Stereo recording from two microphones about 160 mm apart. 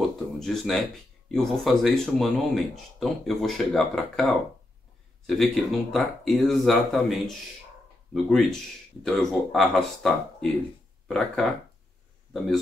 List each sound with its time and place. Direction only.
0.4 s speech: centre (ahead or behind)